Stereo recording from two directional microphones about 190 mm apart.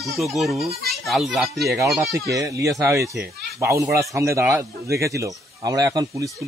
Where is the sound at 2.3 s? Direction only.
15° right (ahead or behind).